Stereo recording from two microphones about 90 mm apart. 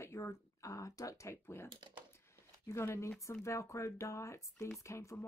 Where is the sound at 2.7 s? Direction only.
30° left (ahead or behind).